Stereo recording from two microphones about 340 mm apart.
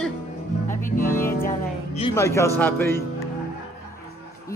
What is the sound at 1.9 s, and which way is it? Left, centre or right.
Speech, centre.